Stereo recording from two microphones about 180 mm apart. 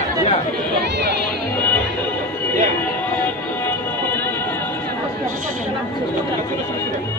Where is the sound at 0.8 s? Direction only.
65° right (ahead or behind).